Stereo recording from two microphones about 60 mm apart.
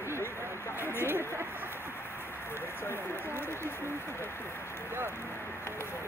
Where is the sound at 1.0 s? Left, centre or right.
Right.